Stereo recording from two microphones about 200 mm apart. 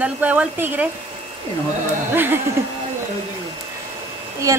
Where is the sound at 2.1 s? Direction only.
10° right (ahead or behind).